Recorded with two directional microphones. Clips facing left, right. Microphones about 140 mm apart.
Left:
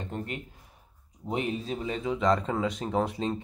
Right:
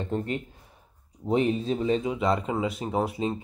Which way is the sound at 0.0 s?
30° right (ahead or behind).